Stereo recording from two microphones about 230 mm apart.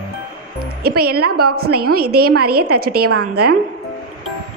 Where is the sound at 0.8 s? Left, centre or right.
Right.